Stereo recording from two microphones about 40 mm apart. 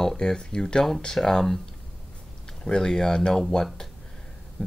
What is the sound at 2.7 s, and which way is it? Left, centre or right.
Speech, centre.